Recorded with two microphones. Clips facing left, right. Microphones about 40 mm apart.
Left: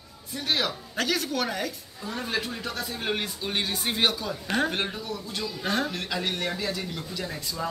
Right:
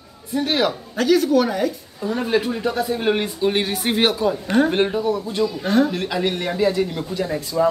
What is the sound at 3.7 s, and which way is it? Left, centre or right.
Speech, right.